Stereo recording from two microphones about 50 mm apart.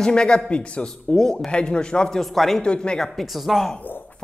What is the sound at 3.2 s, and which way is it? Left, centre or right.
Speech, centre.